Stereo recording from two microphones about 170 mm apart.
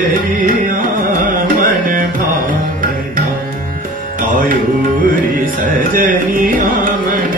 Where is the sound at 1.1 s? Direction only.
55° right (ahead or behind).